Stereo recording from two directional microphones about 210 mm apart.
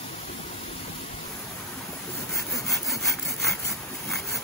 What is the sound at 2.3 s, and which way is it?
Sawing, centre (ahead or behind).